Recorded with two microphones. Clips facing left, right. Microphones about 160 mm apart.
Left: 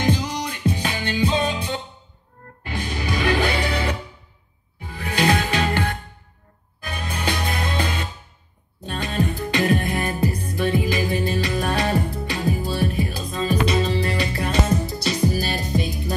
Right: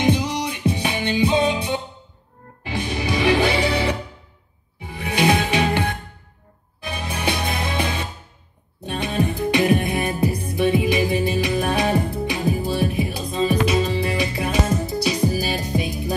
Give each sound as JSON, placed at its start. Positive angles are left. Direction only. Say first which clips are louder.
{"t": 0.0, "sound": "music", "louder": "right 3 dB", "side_deg": -20}
{"t": 13.5, "sound": "music", "louder": "left 1 dB", "side_deg": -10}